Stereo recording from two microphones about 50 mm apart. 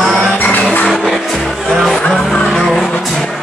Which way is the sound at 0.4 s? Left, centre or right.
Left.